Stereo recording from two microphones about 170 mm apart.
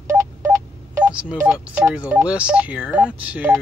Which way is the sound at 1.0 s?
5° right (ahead or behind).